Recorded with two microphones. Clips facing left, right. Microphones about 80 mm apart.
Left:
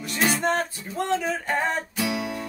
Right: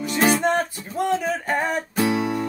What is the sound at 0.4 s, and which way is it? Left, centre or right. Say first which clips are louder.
Music: right 3 dB; centre.